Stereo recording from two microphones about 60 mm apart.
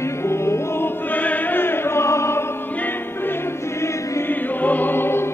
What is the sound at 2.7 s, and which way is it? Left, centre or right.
Music, left.